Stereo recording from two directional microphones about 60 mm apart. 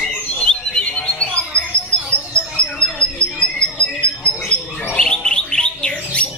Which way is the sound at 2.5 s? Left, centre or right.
Centre.